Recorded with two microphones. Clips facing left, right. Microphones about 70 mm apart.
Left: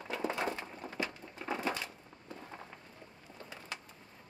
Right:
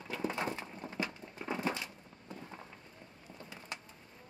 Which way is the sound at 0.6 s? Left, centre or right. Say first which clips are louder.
Even; centre.